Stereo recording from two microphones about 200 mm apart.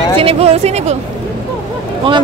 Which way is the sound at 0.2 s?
30° right (ahead or behind).